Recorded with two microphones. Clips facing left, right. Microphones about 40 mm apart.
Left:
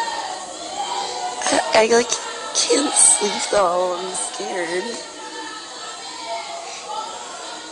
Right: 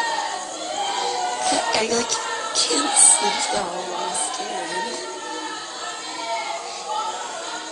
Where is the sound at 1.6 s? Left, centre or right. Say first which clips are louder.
Left 6 dB; left.